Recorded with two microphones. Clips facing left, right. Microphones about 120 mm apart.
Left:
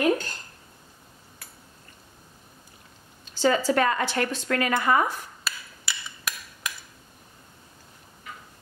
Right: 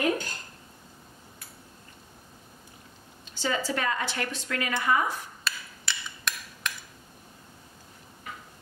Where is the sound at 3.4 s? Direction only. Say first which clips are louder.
Left 8 dB; 50° left (ahead or behind).